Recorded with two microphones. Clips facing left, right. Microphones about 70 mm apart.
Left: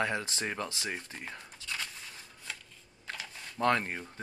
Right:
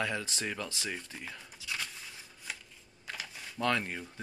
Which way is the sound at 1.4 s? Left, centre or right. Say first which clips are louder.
Right 2 dB; centre.